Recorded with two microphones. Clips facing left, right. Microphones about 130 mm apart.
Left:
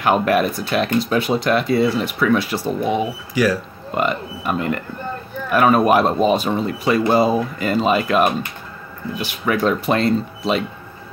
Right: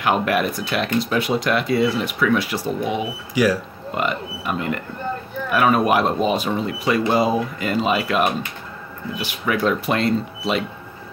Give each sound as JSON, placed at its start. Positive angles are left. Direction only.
{"t": 0.0, "sound": "speech", "side_deg": 40}
{"t": 3.4, "sound": "speech", "side_deg": -15}
{"t": 3.9, "sound": "speech", "side_deg": 40}